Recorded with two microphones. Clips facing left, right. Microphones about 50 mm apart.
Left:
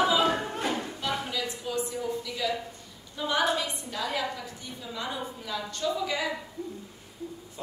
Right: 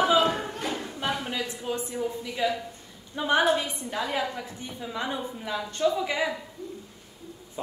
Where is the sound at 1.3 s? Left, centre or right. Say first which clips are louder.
Right 1 dB; right.